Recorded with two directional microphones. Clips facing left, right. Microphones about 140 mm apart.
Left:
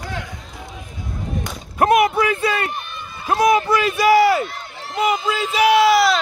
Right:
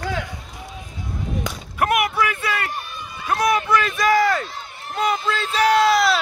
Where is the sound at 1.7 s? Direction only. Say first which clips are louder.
Left 5 dB; 30° left (ahead or behind).